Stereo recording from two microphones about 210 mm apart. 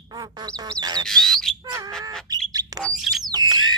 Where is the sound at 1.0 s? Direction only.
Centre (ahead or behind).